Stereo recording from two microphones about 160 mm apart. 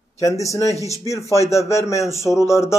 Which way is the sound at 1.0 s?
20° left (ahead or behind).